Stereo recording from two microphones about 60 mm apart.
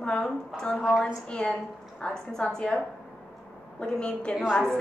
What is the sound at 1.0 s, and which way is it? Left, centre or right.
A woman's voice, centre.